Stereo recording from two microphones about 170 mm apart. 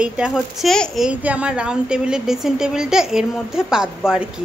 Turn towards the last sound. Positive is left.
turn(degrees=-5)  # may be behind; listen again after turning